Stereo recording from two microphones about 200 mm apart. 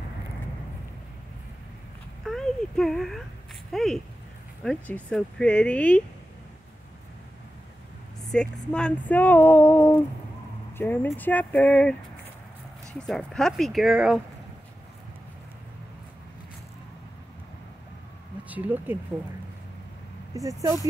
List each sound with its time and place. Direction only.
2.2 s a sound: centre (ahead or behind)
3.7 s speech: centre (ahead or behind)
4.6 s female singing: 5° left (ahead or behind)
8.3 s female singing: 5° left (ahead or behind)
13.0 s speech: centre (ahead or behind)
18.5 s speech: 10° right (ahead or behind)
20.3 s speech: 15° right (ahead or behind)